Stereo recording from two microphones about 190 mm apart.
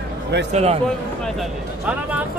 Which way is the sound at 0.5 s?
35° right (ahead or behind).